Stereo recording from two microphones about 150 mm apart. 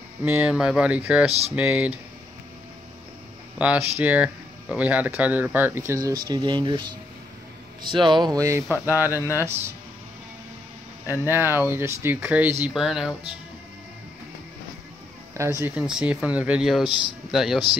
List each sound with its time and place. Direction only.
0.2 s speech: 5° right (ahead or behind)
3.5 s speech: 10° right (ahead or behind)
6.2 s speech: 30° right (ahead or behind)
11.1 s speech: 15° right (ahead or behind)
12.6 s speech: centre (ahead or behind)
15.3 s speech: 20° right (ahead or behind); by 17.6 s 5° right (ahead or behind)